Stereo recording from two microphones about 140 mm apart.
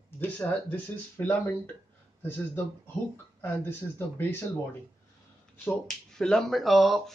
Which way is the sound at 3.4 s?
15° left (ahead or behind).